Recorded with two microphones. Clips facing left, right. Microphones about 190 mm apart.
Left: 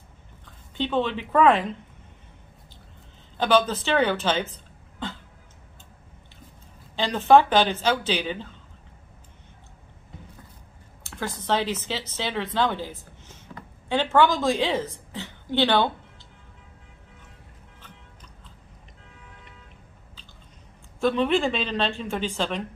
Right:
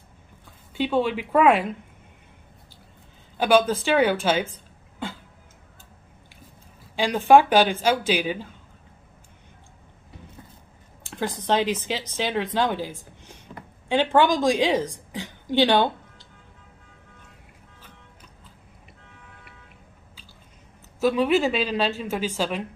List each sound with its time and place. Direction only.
0.5 s speech: 10° right (ahead or behind)
3.3 s speech: 10° right (ahead or behind)
5.0 s cough: 10° right (ahead or behind)
7.0 s speech: 10° right (ahead or behind)
11.1 s speech: 15° right (ahead or behind)
21.0 s speech: 5° right (ahead or behind)